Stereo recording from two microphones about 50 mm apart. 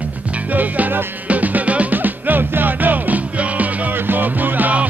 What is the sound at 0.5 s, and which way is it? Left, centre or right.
Music, right.